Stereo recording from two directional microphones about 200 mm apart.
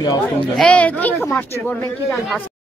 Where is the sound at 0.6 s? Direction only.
5° left (ahead or behind).